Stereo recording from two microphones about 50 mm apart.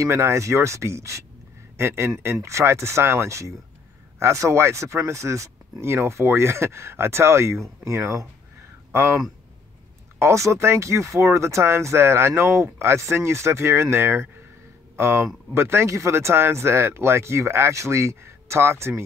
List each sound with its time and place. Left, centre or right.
0.0 s speech: right